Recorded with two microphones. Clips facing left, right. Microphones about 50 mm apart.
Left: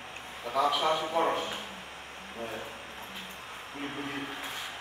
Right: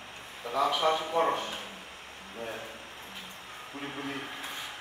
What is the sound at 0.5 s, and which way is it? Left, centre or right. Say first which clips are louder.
Speech: even; centre.